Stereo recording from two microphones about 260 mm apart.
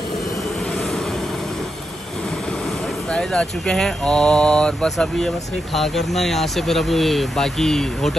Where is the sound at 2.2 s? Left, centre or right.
Centre.